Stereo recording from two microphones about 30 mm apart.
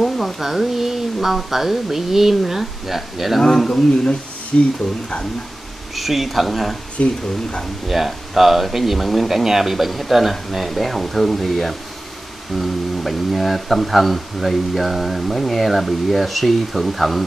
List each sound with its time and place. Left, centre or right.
0.4 s speech: centre
3.3 s speech: centre
5.9 s speech: centre
7.0 s speech: left
7.9 s speech: centre
9.4 s speech: centre